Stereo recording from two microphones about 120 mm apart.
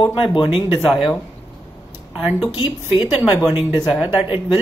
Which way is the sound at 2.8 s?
15° right (ahead or behind).